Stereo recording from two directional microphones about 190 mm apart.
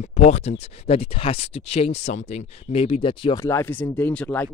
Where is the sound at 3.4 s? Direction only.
15° left (ahead or behind).